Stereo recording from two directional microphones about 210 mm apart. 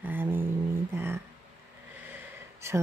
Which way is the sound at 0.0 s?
10° right (ahead or behind).